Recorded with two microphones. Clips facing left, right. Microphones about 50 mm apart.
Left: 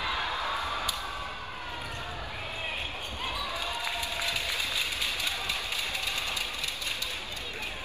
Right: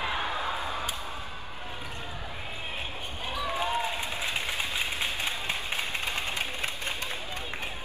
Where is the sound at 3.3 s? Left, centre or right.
Right.